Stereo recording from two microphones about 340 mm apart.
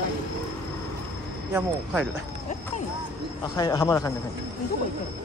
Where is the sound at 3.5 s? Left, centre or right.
Centre.